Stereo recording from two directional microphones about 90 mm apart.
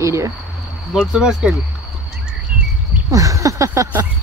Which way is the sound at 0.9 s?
5° right (ahead or behind).